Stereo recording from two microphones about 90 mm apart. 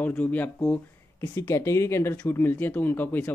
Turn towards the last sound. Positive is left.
turn(degrees=20)  # may be behind; listen again after turning